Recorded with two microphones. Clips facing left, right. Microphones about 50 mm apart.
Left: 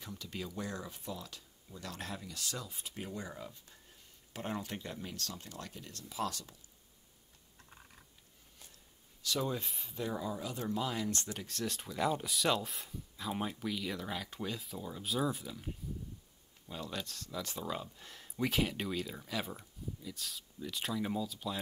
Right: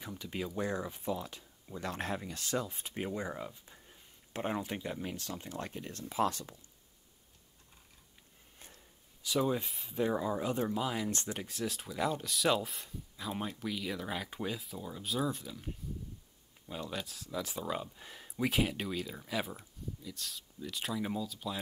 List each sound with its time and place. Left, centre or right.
0.0 s speech: centre; by 3.1 s right
3.1 s speech: right
9.2 s speech: centre
9.7 s speech: centre
9.9 s speech: right
10.7 s speech: centre
11.1 s speech: right
11.4 s speech: centre
14.6 s speech: centre
16.6 s speech: centre